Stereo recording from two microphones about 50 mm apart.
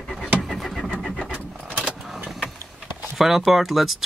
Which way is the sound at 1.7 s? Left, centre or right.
Right.